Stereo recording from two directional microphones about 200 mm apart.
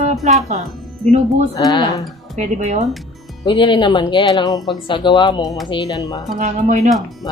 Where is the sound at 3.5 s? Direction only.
25° left (ahead or behind).